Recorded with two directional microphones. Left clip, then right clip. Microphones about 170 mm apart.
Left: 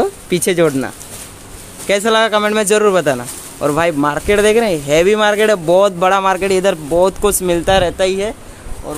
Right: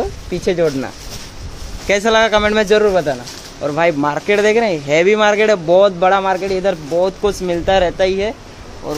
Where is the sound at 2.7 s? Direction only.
40° left (ahead or behind).